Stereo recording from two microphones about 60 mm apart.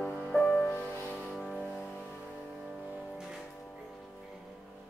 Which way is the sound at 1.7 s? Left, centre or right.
Left.